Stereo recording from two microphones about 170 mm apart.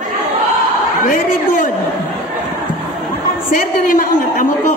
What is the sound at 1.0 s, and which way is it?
Speech, 50° left (ahead or behind).